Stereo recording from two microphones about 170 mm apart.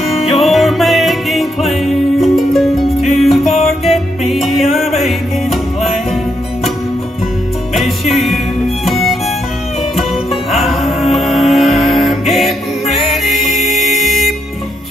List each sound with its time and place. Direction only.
0.3 s music: centre (ahead or behind)
7.7 s music: centre (ahead or behind)